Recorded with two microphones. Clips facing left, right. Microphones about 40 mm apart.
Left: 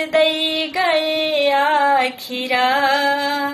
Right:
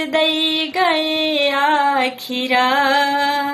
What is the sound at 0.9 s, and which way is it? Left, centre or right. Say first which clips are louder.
Music: even; centre.